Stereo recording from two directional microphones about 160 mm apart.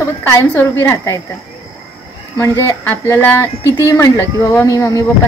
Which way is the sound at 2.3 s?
15° left (ahead or behind).